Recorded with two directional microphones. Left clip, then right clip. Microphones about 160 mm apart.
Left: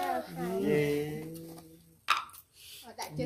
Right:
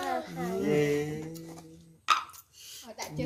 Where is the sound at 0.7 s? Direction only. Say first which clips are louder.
Right 2 dB; 20° right (ahead or behind).